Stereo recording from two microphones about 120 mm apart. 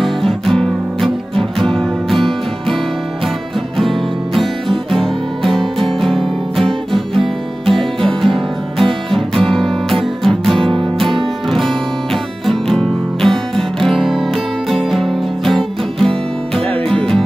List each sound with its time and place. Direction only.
0.0 s music: centre (ahead or behind)
4.4 s music: centre (ahead or behind)
10.6 s music: 45° right (ahead or behind)
11.5 s music: centre (ahead or behind)